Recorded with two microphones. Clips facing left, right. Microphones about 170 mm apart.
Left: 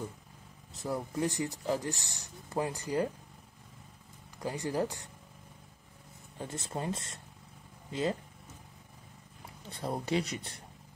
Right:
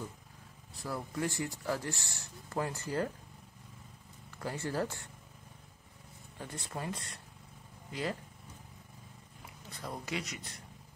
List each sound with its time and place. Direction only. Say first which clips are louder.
0.7 s speech: left 4 dB; 20° left (ahead or behind)
4.4 s speech: left 3 dB; 15° left (ahead or behind)
6.3 s speech: left 4 dB; 25° left (ahead or behind)
9.7 s speech: left 7 dB; 30° left (ahead or behind)